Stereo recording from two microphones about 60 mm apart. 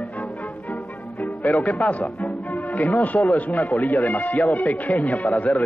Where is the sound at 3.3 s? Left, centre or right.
Left.